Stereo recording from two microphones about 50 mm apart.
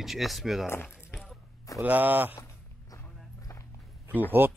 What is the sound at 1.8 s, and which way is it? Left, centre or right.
Speech, right.